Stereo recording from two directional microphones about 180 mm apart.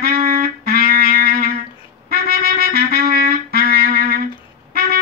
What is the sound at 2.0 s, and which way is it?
Trumpet, 60° right (ahead or behind).